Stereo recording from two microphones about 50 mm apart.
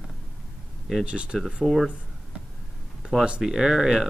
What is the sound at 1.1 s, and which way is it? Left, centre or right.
Speech, right.